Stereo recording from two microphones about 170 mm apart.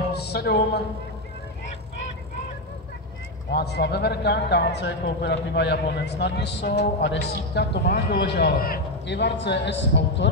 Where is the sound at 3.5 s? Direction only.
75° left (ahead or behind).